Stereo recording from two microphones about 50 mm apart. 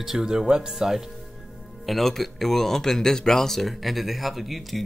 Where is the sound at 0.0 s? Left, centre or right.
Centre.